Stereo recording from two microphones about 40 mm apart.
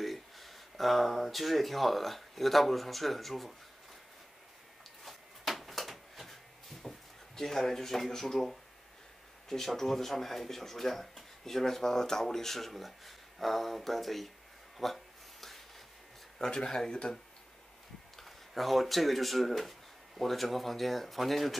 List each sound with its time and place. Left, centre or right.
0.0 s speech: centre
5.0 s a sound: centre
6.8 s speech: centre
16.3 s speech: centre
18.1 s speech: centre